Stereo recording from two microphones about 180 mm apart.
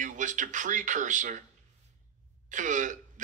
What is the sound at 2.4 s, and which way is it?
Speech, 45° right (ahead or behind).